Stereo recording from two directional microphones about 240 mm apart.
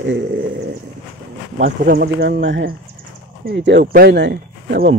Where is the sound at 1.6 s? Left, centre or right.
Right.